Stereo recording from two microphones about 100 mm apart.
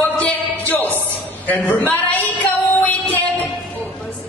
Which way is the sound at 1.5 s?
15° left (ahead or behind).